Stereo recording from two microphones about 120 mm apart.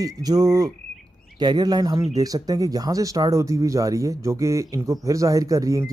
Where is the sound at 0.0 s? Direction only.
30° right (ahead or behind).